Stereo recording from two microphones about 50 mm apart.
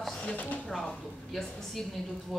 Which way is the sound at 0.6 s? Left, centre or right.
Centre.